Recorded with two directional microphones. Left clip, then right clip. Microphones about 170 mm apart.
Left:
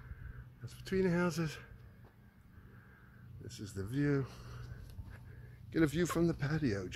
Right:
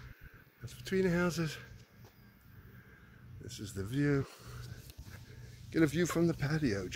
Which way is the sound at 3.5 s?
Centre (ahead or behind).